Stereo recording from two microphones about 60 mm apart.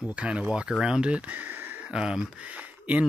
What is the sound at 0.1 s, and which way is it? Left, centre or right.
Speech, right.